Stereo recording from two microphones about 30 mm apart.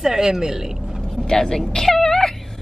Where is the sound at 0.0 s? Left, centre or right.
Centre.